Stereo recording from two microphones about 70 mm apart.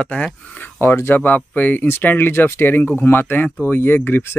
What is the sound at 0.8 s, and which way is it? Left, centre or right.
Speech, left.